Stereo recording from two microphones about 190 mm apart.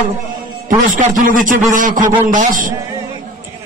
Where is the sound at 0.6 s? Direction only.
45° right (ahead or behind).